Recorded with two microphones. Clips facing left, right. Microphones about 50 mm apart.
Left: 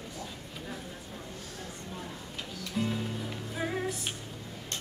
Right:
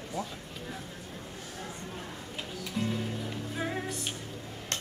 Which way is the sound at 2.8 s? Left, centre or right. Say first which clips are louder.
Left 1 dB; centre.